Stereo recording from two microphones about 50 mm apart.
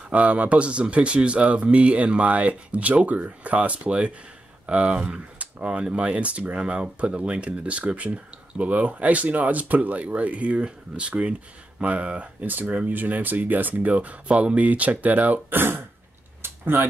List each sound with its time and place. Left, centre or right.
0.1 s speech: right
12.7 s speech: right
15.5 s speech: right
16.4 s a sound: right